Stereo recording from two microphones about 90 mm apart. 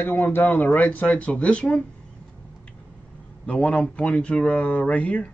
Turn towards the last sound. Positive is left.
turn(degrees=15)  # may be behind; listen again after turning